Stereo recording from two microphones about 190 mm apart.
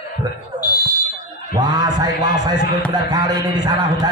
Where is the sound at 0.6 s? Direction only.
20° left (ahead or behind).